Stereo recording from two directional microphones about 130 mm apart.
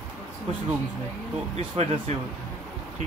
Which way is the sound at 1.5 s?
55° right (ahead or behind).